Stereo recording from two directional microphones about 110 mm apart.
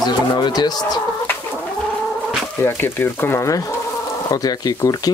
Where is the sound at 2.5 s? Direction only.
20° left (ahead or behind).